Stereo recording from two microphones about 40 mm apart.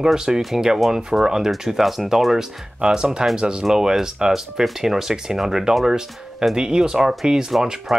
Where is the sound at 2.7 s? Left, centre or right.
Centre.